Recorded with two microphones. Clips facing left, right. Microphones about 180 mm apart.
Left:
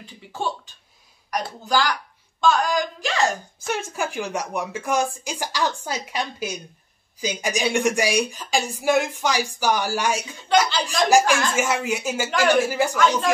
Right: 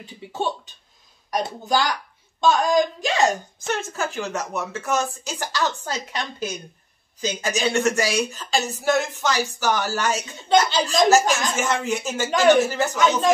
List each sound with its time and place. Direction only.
0.0 s speech: 20° right (ahead or behind)
3.5 s speech: 10° left (ahead or behind)
12.9 s speech: 20° right (ahead or behind)